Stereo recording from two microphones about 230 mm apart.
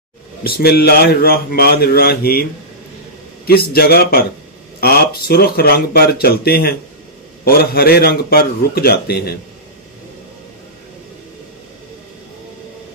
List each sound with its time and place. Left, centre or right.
0.4 s a man's voice: left
3.4 s a man's voice: left